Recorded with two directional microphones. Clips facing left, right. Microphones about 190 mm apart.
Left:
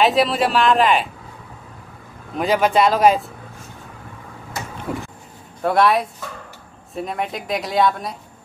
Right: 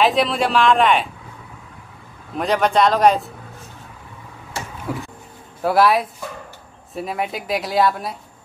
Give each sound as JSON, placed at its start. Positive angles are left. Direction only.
{"t": 0.0, "sound": "speech", "side_deg": 0}
{"t": 2.3, "sound": "speech", "side_deg": 0}
{"t": 4.9, "sound": "speech", "side_deg": 0}